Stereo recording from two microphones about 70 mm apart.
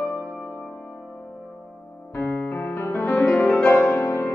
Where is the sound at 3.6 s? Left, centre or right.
Left.